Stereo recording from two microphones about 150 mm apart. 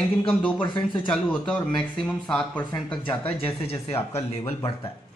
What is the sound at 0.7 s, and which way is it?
Speech, 10° left (ahead or behind).